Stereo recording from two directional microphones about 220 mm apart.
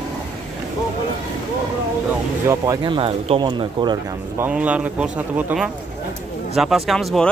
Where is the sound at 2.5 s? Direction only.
15° right (ahead or behind).